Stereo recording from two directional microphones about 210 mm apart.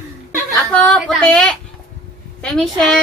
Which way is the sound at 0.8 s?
5° left (ahead or behind).